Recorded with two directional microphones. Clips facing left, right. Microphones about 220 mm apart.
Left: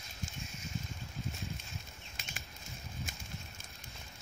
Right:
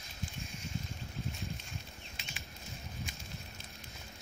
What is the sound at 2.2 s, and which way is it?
Bird flight, 45° left (ahead or behind).